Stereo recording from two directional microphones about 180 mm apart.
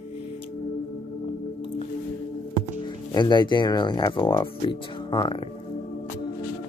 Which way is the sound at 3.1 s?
25° left (ahead or behind).